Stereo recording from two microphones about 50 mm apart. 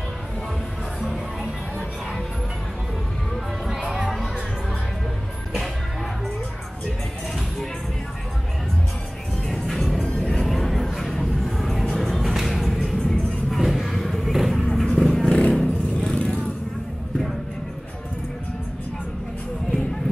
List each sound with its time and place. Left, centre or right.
9.5 s music: centre
10.0 s music: centre
10.4 s music: centre
13.5 s vehicle: centre
15.2 s vehicle: centre